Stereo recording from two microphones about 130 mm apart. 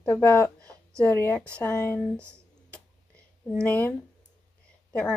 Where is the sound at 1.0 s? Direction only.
15° left (ahead or behind).